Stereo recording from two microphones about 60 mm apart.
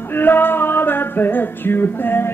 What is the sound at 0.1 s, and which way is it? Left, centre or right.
Music, left.